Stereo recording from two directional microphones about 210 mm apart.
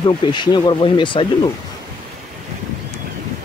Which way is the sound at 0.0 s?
20° left (ahead or behind).